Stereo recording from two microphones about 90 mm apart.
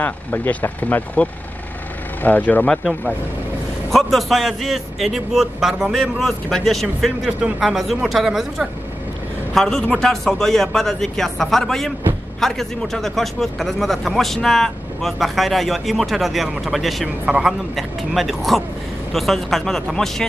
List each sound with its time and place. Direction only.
0.0 s speech: 15° left (ahead or behind)
3.9 s speech: centre (ahead or behind)